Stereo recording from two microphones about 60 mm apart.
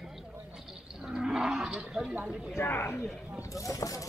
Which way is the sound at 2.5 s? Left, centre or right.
Left.